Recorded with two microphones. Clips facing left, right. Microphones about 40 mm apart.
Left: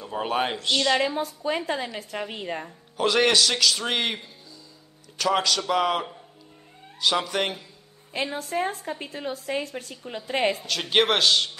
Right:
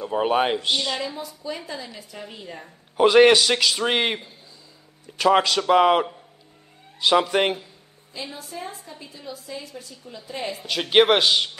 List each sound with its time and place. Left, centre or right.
0.0 s a man's voice: centre
0.8 s a woman's voice: left
3.0 s a man's voice: centre
8.1 s a woman's voice: left
10.6 s a man's voice: centre